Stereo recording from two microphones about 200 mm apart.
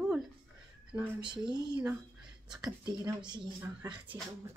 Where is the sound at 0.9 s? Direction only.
25° right (ahead or behind).